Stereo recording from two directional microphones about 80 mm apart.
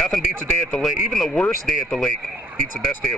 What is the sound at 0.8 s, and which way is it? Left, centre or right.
A man's voice, centre.